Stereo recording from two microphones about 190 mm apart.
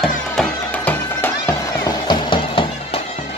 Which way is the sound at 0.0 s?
5° left (ahead or behind).